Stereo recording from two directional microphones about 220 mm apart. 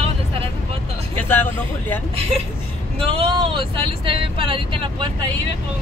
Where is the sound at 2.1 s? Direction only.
25° right (ahead or behind).